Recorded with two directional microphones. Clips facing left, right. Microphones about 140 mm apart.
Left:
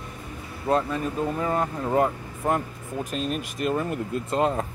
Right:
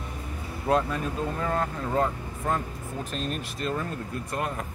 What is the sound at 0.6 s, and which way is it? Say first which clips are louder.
Speech: left 1 dB; centre (ahead or behind).